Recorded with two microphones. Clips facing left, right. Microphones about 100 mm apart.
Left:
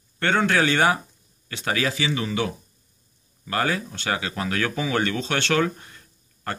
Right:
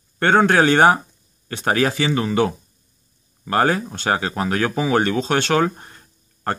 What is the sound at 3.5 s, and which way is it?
Speech, 35° right (ahead or behind).